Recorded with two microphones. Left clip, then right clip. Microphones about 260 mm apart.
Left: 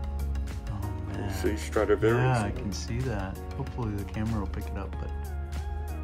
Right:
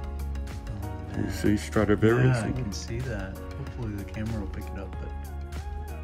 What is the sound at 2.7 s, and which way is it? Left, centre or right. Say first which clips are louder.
Speech: right 1 dB; centre.